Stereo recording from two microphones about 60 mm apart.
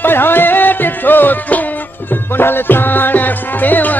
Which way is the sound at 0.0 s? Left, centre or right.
Left.